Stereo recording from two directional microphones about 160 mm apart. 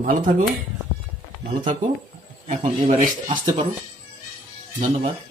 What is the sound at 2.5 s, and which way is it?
Speech, 45° right (ahead or behind).